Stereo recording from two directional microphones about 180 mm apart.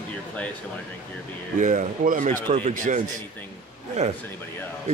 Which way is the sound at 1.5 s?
45° right (ahead or behind).